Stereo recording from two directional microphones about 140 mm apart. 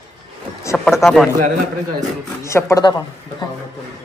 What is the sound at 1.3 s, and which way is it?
Speech, 65° right (ahead or behind).